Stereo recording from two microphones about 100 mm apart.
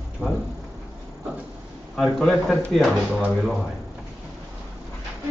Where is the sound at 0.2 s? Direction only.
25° left (ahead or behind).